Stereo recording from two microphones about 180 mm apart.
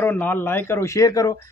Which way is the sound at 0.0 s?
10° left (ahead or behind).